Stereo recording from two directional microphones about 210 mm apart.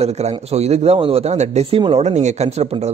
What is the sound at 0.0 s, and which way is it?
A man's voice, 30° right (ahead or behind).